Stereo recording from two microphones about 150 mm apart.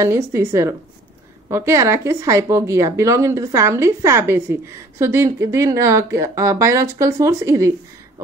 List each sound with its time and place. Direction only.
0.0 s a woman's voice: 20° right (ahead or behind)